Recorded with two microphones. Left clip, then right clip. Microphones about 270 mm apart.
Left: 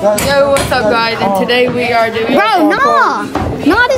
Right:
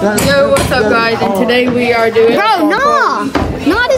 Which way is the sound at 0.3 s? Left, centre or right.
Centre.